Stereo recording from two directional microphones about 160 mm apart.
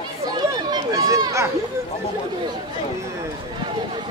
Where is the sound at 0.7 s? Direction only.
20° right (ahead or behind).